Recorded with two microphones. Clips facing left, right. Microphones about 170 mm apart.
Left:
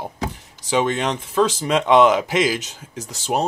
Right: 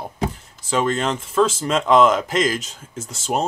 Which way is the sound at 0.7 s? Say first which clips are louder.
Left 1 dB; centre (ahead or behind).